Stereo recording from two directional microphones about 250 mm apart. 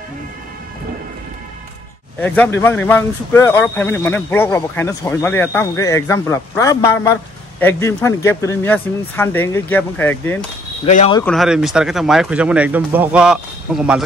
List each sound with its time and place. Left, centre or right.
2.1 s speech: centre
10.9 s speech: left
11.1 s speech: centre